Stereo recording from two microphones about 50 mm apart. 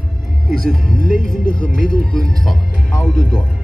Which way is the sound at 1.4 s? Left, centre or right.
Centre.